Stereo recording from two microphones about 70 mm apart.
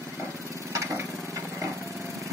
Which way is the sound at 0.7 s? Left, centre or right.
Right.